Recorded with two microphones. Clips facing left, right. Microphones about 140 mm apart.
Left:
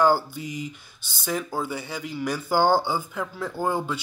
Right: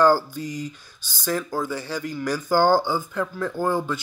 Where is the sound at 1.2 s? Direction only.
20° left (ahead or behind).